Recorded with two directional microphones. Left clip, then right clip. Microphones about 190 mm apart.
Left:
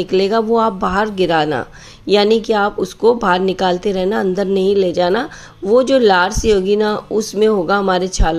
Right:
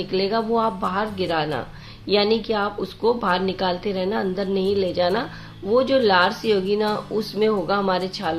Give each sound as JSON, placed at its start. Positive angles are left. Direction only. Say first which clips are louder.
{"t": 0.1, "sound": "a woman's voice", "louder": "left 7 dB", "side_deg": 45}